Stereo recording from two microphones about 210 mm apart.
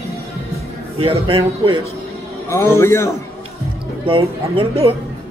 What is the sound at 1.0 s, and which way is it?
Speech, 25° right (ahead or behind).